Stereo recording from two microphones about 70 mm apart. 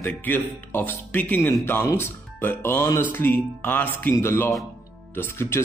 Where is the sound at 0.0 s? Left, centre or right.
Left.